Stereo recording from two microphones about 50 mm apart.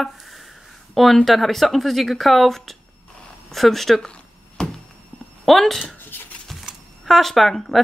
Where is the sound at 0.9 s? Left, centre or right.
Centre.